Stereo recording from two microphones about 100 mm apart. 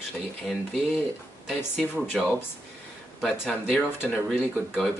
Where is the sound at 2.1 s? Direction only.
5° right (ahead or behind).